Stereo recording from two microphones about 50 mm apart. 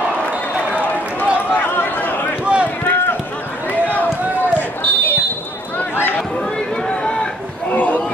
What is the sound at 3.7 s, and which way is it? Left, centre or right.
Run, left.